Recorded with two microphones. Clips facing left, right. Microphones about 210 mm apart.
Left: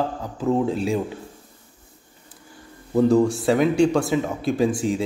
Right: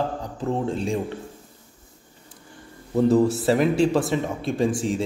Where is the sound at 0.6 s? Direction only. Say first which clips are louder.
Left 2 dB; 5° left (ahead or behind).